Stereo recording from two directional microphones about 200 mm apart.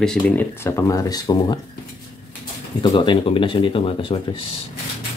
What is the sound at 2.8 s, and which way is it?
Speech, 25° left (ahead or behind).